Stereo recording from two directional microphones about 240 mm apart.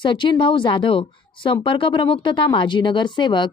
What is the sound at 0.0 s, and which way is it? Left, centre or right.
Speech, centre.